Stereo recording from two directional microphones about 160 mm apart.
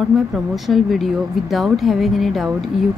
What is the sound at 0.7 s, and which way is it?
Speech, centre (ahead or behind).